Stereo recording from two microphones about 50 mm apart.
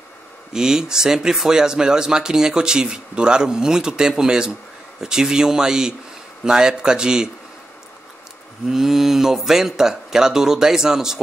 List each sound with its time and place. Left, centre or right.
0.5 s speech: centre
8.6 s speech: centre